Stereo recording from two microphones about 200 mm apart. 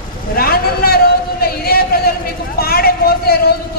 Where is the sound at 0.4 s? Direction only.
50° left (ahead or behind).